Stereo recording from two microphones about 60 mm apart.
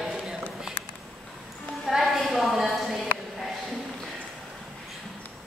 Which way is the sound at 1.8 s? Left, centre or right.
Centre.